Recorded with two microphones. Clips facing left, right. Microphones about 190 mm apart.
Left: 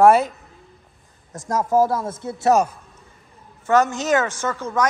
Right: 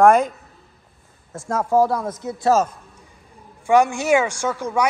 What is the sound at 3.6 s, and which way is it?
A woman's voice, 10° right (ahead or behind).